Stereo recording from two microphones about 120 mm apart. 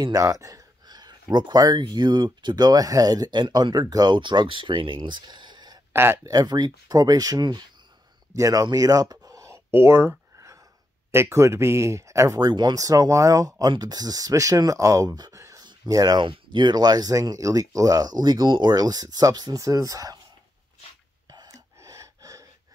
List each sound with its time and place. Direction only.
0.0 s speech: 30° right (ahead or behind)
5.9 s speech: 20° right (ahead or behind)
8.4 s a sound: 30° right (ahead or behind)
11.1 s speech: 20° right (ahead or behind)
21.3 s gasp: 30° right (ahead or behind)